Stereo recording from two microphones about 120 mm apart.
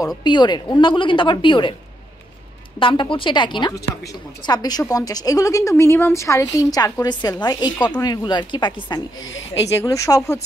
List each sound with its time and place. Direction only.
0.2 s a woman's voice: 40° left (ahead or behind)
2.8 s a woman's voice: 45° left (ahead or behind)
9.7 s speech: 25° left (ahead or behind)